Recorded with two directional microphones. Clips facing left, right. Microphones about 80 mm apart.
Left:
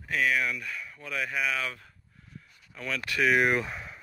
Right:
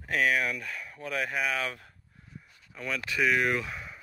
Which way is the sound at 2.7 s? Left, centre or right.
Centre.